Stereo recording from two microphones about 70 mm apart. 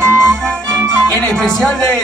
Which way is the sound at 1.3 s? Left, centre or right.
Centre.